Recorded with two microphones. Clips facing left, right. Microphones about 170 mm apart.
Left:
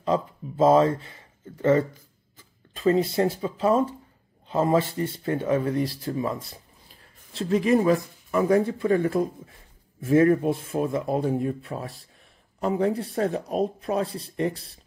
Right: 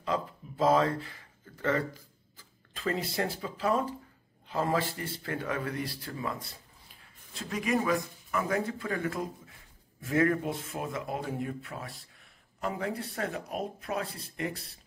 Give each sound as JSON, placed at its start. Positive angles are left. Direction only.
{"t": 0.0, "sound": "speech", "side_deg": 25}
{"t": 7.3, "sound": "speech", "side_deg": 30}